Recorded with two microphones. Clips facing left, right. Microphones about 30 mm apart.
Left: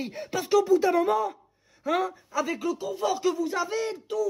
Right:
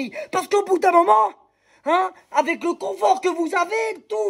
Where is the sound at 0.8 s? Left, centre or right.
Right.